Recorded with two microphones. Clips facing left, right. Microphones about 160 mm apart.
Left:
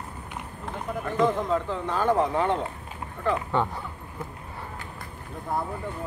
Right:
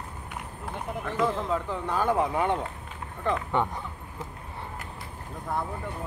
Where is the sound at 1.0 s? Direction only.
Centre (ahead or behind); by 3.4 s 20° right (ahead or behind).